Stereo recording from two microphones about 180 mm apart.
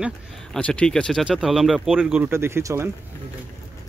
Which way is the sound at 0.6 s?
5° left (ahead or behind).